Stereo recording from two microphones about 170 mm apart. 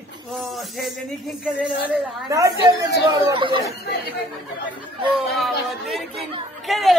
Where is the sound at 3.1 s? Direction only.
25° right (ahead or behind).